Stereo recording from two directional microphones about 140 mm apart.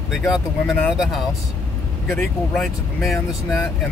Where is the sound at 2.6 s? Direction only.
Centre (ahead or behind).